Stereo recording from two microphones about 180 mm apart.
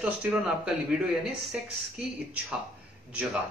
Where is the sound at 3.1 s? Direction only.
5° right (ahead or behind).